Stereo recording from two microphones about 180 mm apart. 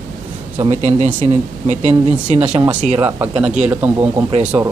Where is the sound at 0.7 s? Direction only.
40° right (ahead or behind).